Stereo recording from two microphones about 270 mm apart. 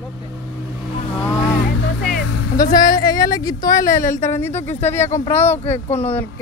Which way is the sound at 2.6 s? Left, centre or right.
Centre.